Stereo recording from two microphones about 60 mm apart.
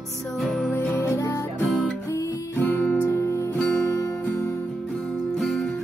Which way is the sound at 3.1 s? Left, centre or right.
Left.